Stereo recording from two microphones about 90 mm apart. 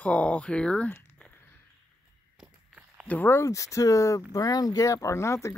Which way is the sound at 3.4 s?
35° left (ahead or behind).